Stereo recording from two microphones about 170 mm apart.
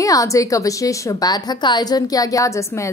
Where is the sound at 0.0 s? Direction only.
20° left (ahead or behind).